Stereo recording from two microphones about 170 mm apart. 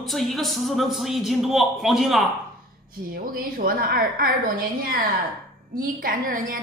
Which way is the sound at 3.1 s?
55° right (ahead or behind).